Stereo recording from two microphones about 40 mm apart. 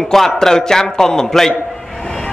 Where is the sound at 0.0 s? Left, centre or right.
Centre.